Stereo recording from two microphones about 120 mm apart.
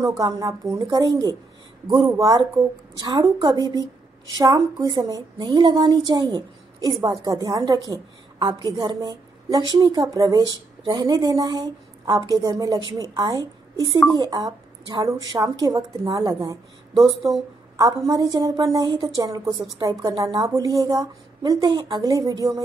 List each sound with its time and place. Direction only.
0.1 s a woman's voice: 30° right (ahead or behind)
10.0 s a woman's voice: 30° right (ahead or behind)
10.8 s a woman's voice: 40° right (ahead or behind)
16.9 s speech: centre (ahead or behind)
17.7 s a woman's voice: 30° right (ahead or behind)